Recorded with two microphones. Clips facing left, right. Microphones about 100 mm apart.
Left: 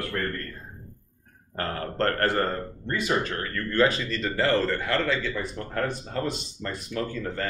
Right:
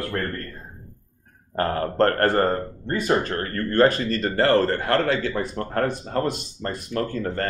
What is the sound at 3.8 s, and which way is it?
Speech, 50° right (ahead or behind).